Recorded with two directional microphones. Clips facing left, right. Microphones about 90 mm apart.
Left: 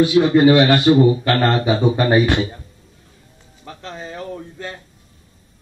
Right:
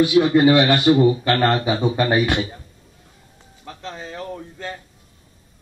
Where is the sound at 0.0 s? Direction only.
30° left (ahead or behind).